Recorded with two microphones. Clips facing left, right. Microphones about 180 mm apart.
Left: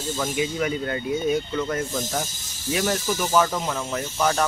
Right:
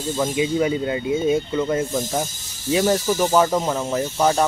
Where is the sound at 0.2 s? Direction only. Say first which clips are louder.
Right 5 dB; 20° right (ahead or behind).